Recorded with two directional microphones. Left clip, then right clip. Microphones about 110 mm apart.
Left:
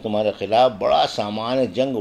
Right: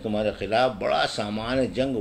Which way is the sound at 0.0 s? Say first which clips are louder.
Left 5 dB; 25° left (ahead or behind).